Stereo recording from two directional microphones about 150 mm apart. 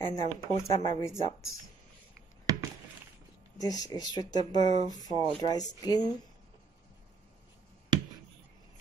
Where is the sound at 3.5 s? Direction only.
25° left (ahead or behind).